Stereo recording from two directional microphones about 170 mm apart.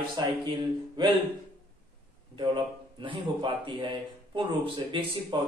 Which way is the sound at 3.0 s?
30° right (ahead or behind).